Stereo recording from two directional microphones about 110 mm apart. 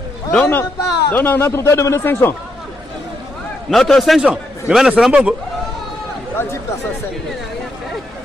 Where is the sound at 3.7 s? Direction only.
Centre (ahead or behind).